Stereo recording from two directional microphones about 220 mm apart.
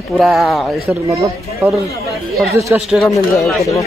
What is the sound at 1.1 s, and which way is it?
Speech, 15° right (ahead or behind).